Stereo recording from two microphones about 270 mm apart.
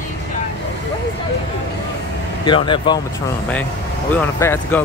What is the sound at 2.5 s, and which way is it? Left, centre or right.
Speech, centre.